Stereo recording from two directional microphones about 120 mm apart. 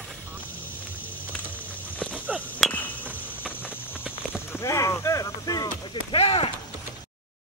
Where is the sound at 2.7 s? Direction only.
15° left (ahead or behind).